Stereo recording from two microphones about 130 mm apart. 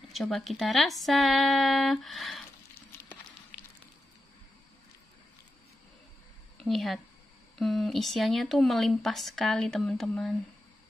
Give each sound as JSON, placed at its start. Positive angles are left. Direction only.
{"t": 0.1, "sound": "speech", "side_deg": 0}
{"t": 2.7, "sound": "a sound", "side_deg": 20}
{"t": 6.6, "sound": "speech", "side_deg": 0}